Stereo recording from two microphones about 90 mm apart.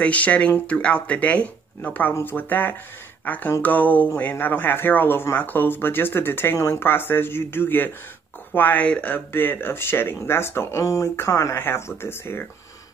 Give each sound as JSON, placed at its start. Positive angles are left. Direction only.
{"t": 0.0, "sound": "speech", "side_deg": 15}